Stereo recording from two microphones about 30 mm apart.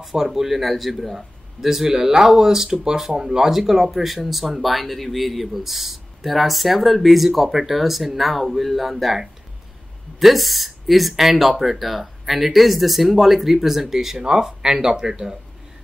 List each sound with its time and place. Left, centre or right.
0.1 s a man's voice: centre